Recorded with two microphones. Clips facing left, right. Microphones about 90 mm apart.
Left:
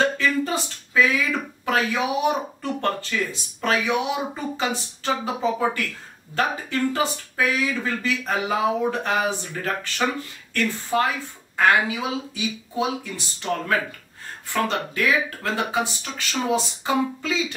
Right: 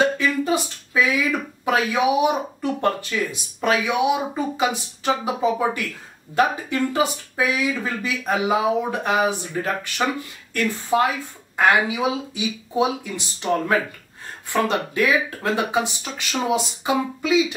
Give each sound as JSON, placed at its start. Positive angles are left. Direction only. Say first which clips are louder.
{"t": 0.0, "sound": "speech", "louder": "right 1 dB", "side_deg": -15}